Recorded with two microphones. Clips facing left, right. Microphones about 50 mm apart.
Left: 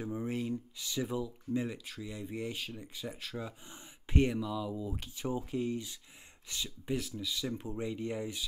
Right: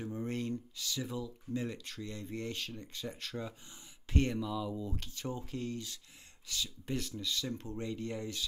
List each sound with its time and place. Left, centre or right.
0.0 s speech: centre
0.7 s speech: centre
6.9 s speech: centre